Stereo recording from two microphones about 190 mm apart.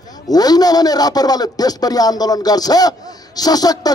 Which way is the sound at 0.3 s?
20° left (ahead or behind).